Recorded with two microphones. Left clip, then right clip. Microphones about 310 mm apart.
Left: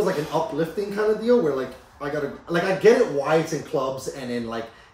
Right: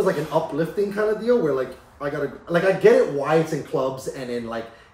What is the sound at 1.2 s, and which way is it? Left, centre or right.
Speech, centre.